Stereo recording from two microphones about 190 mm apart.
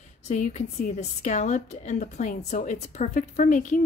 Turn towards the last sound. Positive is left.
turn(degrees=40)  # may be behind; listen again after turning